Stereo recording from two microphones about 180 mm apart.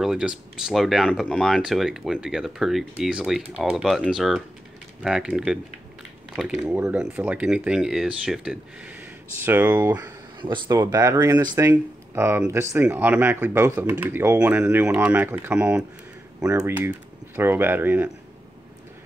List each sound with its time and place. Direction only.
0.0 s speech: 5° right (ahead or behind)